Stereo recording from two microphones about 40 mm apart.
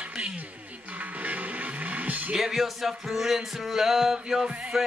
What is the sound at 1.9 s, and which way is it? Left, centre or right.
Music, right.